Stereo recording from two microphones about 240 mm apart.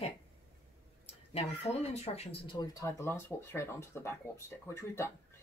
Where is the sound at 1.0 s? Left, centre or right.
Left.